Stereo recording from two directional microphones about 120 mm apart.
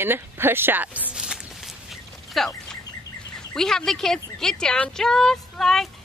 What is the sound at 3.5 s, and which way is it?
Speech, 5° left (ahead or behind).